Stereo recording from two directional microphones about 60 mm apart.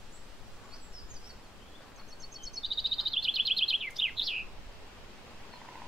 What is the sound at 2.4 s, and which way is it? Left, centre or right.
Bird vocalization, centre.